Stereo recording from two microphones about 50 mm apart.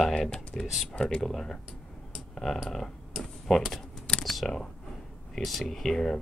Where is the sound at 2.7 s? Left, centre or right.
Centre.